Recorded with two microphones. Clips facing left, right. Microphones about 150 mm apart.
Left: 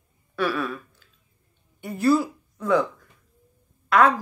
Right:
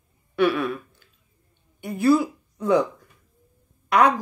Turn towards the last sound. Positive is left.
turn(degrees=-20)  # may be behind; listen again after turning